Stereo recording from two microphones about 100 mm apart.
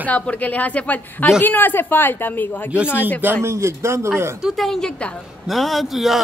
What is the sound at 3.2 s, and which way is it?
A man's voice, 25° right (ahead or behind).